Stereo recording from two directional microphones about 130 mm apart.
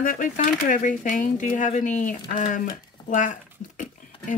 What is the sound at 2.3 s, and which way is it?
Speech, 90° left.